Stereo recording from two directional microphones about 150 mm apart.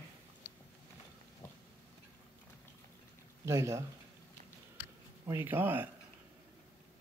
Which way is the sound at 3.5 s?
20° right (ahead or behind).